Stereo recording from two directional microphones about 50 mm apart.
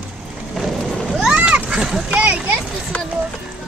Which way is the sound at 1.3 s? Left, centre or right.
Right.